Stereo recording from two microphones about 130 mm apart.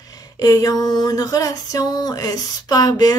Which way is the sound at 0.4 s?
30° left (ahead or behind).